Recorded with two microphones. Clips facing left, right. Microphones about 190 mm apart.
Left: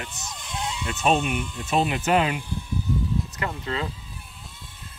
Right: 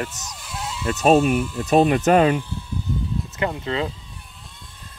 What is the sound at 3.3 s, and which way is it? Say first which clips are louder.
Speech: right 5 dB; 25° right (ahead or behind).